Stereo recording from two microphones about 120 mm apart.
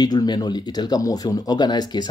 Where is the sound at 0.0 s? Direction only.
35° left (ahead or behind).